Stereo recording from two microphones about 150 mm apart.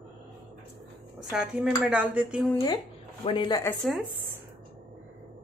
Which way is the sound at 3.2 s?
35° left (ahead or behind).